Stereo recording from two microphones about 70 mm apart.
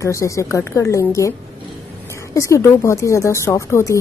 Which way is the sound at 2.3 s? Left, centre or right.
Left.